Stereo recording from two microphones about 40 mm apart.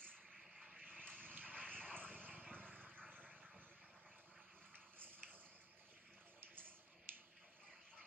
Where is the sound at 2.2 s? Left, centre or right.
Right.